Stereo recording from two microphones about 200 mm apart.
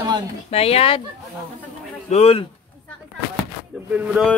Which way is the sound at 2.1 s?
30° left (ahead or behind).